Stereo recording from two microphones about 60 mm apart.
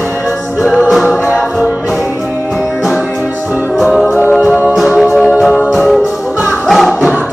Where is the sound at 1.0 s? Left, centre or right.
Centre.